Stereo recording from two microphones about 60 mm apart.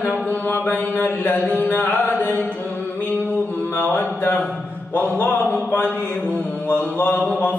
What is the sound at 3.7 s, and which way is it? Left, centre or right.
Mantra, left.